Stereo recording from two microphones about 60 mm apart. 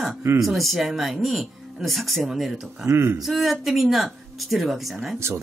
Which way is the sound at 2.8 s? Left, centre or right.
Right.